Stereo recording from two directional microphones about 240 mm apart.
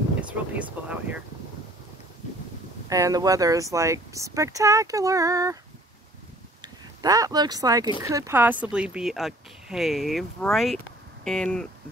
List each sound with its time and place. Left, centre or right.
0.2 s speech: centre
2.9 s speech: centre
6.6 s speech: centre